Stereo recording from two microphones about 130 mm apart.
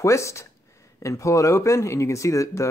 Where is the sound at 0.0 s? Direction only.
20° left (ahead or behind).